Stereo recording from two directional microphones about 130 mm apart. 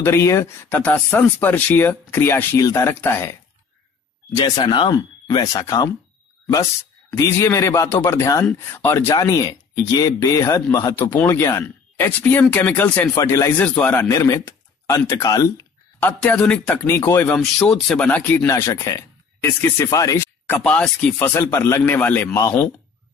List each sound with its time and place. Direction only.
0.0 s speech: 20° left (ahead or behind)
4.6 s speech: 35° left (ahead or behind)
7.1 s speech: 20° left (ahead or behind)
13.1 s speech: 25° left (ahead or behind)
13.6 s speech: 10° left (ahead or behind)
13.9 s speech: 25° left (ahead or behind)
16.1 s speech: 5° left (ahead or behind)
17.3 s speech: 5° left (ahead or behind)
18.4 s speech: 25° left (ahead or behind)
20.4 s speech: 10° left (ahead or behind)